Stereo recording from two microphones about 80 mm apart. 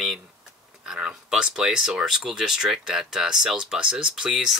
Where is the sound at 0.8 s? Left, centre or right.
Centre.